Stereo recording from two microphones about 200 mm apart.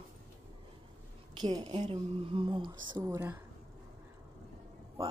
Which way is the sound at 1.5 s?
20° right (ahead or behind).